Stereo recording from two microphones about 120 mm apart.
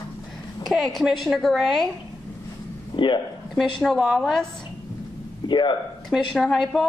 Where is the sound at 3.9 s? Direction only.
Centre (ahead or behind).